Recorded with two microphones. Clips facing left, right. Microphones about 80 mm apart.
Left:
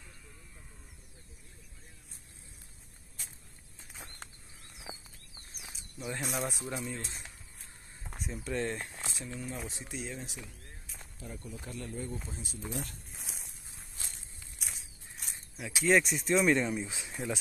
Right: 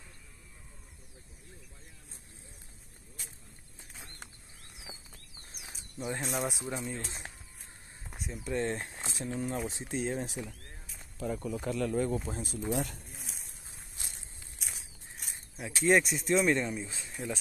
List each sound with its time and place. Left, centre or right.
4.9 s bird: left
5.7 s snake: right
6.2 s speech: centre
6.6 s speech: right
7.2 s a sound: right
8.1 s a sound: centre
8.5 s speech: right
11.1 s speech: right
12.3 s speech: right
13.2 s a sound: centre
14.6 s a sound: centre
15.8 s speech: centre